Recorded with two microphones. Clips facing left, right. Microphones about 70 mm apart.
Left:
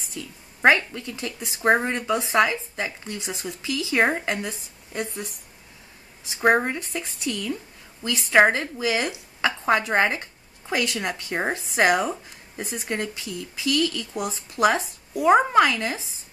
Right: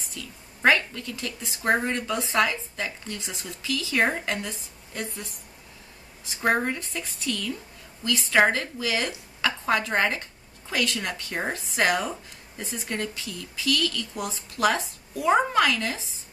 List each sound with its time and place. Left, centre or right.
0.1 s speech: left
6.3 s speech: centre